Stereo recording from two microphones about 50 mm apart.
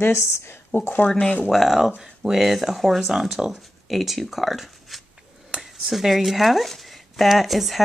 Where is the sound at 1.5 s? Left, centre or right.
Centre.